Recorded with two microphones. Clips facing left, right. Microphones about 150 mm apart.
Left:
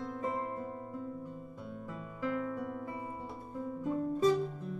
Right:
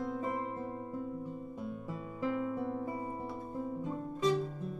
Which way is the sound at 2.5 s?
25° right (ahead or behind).